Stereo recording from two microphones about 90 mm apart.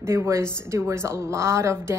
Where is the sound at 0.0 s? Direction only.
30° right (ahead or behind).